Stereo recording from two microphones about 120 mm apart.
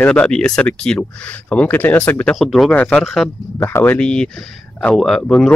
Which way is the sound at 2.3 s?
Centre (ahead or behind).